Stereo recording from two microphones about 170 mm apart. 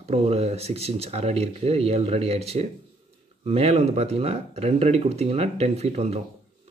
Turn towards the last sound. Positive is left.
turn(degrees=-40)  # may be behind; listen again after turning